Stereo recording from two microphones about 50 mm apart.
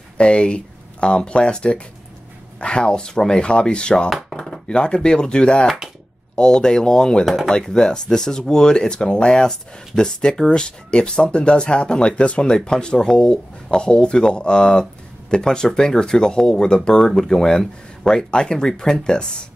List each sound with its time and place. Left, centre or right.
0.2 s speech: left